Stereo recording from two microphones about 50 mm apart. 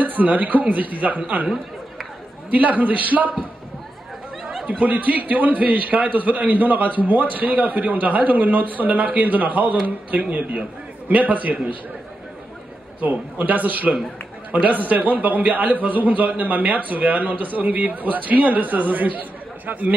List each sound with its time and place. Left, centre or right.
0.0 s a man's voice: right
2.5 s a man's voice: right
4.6 s a man's voice: right
13.0 s a man's voice: right